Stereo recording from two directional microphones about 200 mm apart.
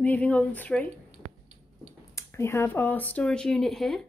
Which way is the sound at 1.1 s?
30° right (ahead or behind).